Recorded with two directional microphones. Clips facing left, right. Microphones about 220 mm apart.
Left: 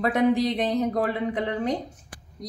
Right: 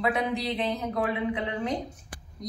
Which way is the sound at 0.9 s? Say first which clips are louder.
Left 2 dB; 40° left (ahead or behind).